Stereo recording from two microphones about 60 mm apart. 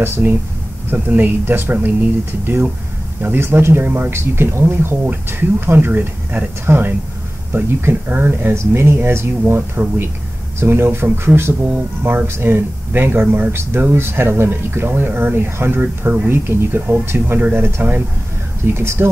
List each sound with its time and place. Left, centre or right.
0.0 s speech: right
3.2 s speech: right
5.0 s speech: right
17.4 s speech: right
18.7 s speech: right